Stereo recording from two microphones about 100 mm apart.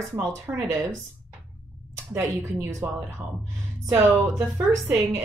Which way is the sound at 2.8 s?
25° right (ahead or behind).